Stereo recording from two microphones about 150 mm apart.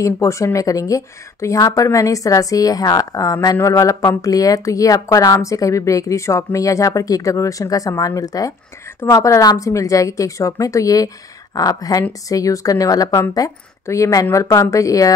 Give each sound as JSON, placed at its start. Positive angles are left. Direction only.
{"t": 0.0, "sound": "a woman's voice", "side_deg": 20}